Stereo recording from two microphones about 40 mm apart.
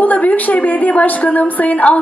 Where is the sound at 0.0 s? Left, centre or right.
Left.